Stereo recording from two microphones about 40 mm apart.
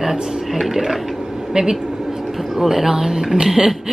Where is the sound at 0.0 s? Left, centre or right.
Centre.